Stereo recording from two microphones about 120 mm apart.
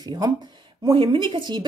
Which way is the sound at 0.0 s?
35° right (ahead or behind).